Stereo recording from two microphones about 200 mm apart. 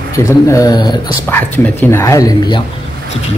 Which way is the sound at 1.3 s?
10° left (ahead or behind).